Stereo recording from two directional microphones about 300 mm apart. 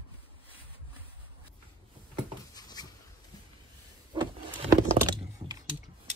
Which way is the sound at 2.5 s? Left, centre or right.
Centre.